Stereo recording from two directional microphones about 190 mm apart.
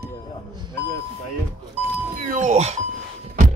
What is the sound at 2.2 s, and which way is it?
Doorbell, 40° right (ahead or behind).